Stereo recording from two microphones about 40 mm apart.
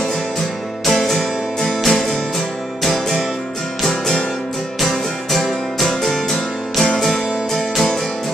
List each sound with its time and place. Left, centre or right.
0.8 s music: centre
4.7 s music: centre